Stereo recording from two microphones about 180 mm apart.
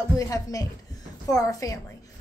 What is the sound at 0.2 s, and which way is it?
A woman's voice, 20° left (ahead or behind).